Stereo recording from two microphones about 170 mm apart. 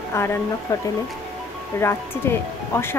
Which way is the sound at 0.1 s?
15° left (ahead or behind).